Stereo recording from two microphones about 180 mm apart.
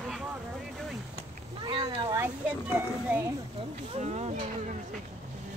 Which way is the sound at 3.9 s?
40° right (ahead or behind).